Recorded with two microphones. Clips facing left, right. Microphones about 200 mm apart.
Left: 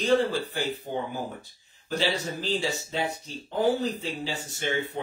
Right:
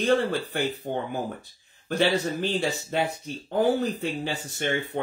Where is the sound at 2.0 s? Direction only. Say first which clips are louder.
Right 5 dB; 55° right (ahead or behind).